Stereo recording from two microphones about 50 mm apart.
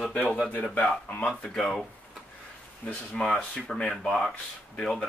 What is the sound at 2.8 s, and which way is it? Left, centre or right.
Speech, centre.